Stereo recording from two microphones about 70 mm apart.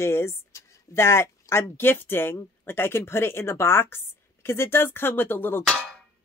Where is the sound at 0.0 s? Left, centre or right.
Left.